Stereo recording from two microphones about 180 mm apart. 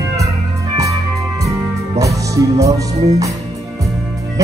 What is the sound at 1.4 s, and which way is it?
Music, 20° right (ahead or behind).